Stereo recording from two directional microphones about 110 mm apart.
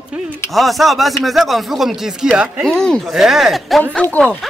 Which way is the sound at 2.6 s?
5° left (ahead or behind).